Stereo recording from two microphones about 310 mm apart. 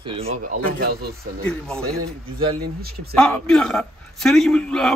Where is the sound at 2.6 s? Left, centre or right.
Right.